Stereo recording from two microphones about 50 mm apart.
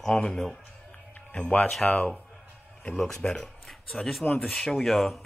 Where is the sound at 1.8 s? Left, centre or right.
Left.